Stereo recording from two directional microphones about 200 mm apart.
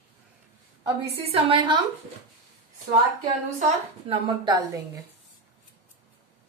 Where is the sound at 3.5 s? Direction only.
30° right (ahead or behind).